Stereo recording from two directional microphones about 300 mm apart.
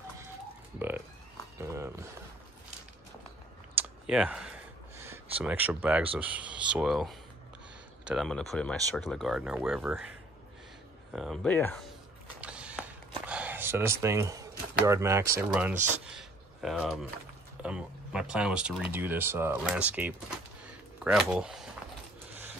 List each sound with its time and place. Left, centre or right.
0.7 s speech: centre
3.7 s a sound: centre
6.1 s speech: centre
11.1 s speech: centre
12.4 s a sound: centre
14.8 s speech: centre